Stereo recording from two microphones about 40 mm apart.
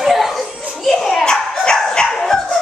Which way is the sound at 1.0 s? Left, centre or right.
Centre.